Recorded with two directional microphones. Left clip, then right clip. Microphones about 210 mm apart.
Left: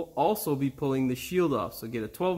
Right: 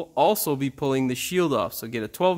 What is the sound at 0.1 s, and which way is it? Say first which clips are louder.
Speech: right 6 dB; 35° right (ahead or behind).